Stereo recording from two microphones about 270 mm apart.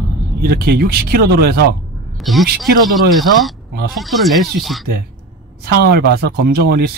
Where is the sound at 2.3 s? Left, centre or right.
Centre.